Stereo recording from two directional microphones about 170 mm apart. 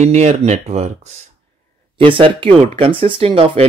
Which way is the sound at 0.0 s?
40° right (ahead or behind).